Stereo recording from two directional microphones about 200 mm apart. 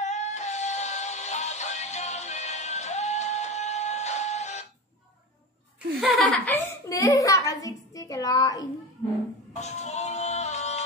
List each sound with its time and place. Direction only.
0.0 s music: 35° left (ahead or behind)
6.2 s chuckle: 5° left (ahead or behind)
6.6 s a sound: 15° left (ahead or behind)
9.6 s music: 35° left (ahead or behind)